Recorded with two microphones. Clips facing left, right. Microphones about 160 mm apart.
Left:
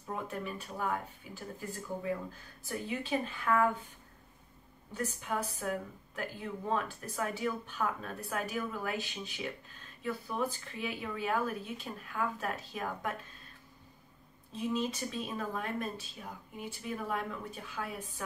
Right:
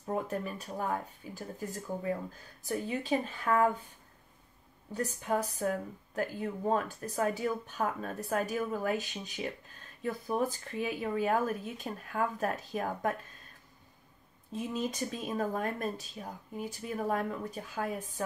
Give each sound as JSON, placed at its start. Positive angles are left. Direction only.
{"t": 0.0, "sound": "speech", "side_deg": -40}
{"t": 2.7, "sound": "speech", "side_deg": -40}
{"t": 4.9, "sound": "speech", "side_deg": -40}
{"t": 14.5, "sound": "speech", "side_deg": -45}